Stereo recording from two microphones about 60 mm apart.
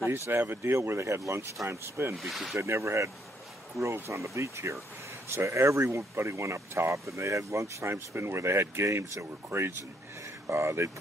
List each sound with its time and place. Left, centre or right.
0.3 s speech: right
2.1 s speech: centre
2.5 s speech: right
9.5 s speech: right